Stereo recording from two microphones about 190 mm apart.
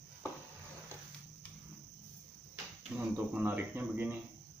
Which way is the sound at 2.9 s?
10° right (ahead or behind).